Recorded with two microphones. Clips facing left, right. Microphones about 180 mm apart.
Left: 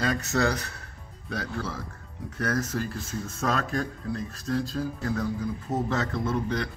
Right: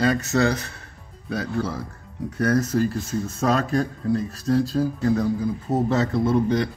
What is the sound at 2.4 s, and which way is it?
Speech, 35° right (ahead or behind).